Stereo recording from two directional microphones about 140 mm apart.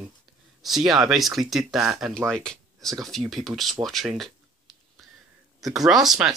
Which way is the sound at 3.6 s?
Centre (ahead or behind).